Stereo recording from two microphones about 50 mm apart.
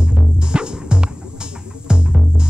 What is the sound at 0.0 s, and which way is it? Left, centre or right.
Music, centre.